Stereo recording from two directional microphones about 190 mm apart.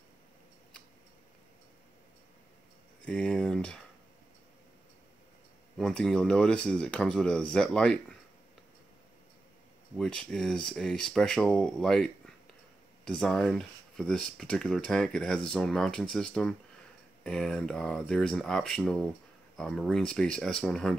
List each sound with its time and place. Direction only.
3.1 s speech: 5° left (ahead or behind)
5.8 s speech: 5° left (ahead or behind)
9.9 s speech: 5° left (ahead or behind)